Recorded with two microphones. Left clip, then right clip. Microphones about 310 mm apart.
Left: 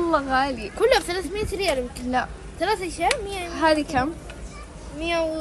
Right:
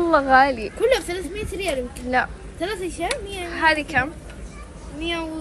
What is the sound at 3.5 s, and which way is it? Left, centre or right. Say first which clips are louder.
Speech: right 1 dB; centre.